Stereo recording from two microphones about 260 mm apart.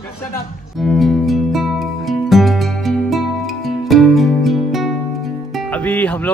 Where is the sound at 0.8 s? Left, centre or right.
Centre.